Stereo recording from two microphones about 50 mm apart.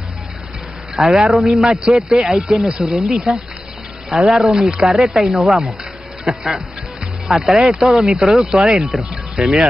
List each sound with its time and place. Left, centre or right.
0.9 s a man's voice: centre
4.7 s speech: centre
5.0 s a man's voice: centre
6.2 s speech: centre
7.2 s a man's voice: centre
8.4 s speech: centre